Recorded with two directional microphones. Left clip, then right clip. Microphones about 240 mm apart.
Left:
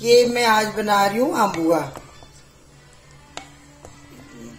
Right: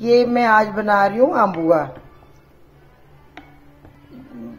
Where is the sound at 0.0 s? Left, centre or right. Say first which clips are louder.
Even; right.